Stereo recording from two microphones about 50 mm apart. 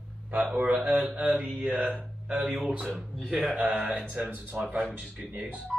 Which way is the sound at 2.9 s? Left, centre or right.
Centre.